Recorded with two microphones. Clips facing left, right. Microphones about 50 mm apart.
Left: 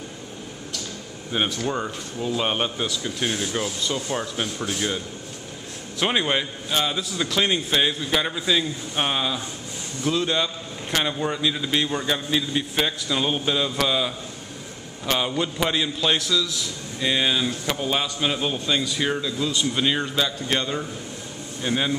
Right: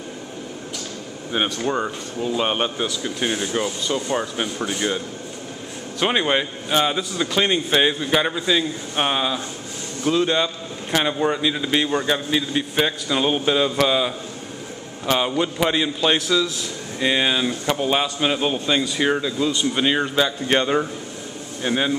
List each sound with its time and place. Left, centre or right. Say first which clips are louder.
1.6 s a man's voice: right 3 dB; centre
16.3 s a man's voice: right 4 dB; right
20.4 s speech: right 6 dB; right
21.6 s a man's voice: right 3 dB; centre